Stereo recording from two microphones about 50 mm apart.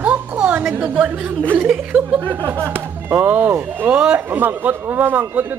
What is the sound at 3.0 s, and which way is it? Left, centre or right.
Speech, right.